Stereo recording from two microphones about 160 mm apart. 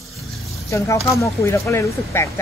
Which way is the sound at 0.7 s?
20° left (ahead or behind).